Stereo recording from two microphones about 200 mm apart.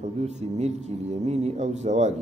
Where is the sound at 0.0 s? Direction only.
35° right (ahead or behind).